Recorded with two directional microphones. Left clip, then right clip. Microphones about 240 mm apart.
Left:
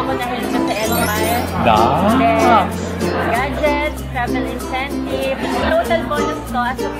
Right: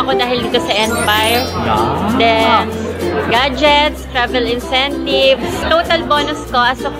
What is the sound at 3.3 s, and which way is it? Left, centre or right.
Speech, right.